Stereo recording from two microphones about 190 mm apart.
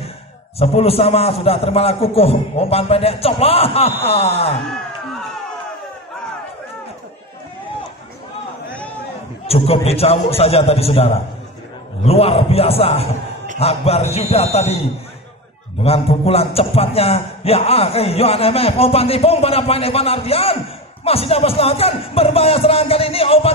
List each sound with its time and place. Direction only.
0.6 s a man's voice: 30° left (ahead or behind)
9.5 s a man's voice: 30° left (ahead or behind)
15.8 s a man's voice: 30° left (ahead or behind)